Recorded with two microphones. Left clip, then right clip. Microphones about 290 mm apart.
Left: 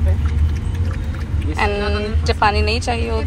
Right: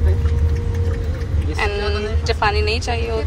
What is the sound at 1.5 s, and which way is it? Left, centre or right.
A woman's voice, centre.